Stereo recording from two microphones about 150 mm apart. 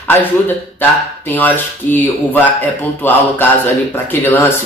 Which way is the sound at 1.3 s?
10° left (ahead or behind).